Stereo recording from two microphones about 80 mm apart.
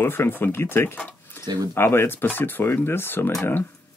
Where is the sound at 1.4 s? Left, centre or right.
Right.